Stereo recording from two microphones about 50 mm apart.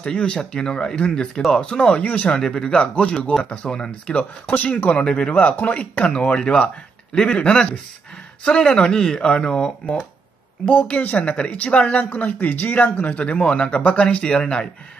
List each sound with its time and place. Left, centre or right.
0.0 s speech: centre
4.9 s speech: centre
5.3 s speech: left; by 10.0 s centre
10.7 s speech: left; by 14.7 s centre